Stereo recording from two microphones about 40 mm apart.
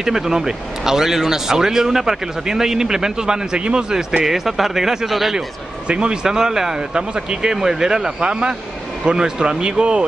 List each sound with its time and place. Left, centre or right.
0.0 s speech: centre; by 4.2 s right
4.2 s speech: centre
5.9 s a man's voice: right
6.2 s speech: centre